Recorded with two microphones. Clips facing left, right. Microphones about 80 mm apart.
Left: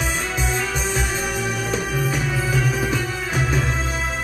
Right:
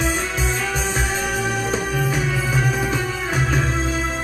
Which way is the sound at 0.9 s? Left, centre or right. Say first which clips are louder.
Right 1 dB; right.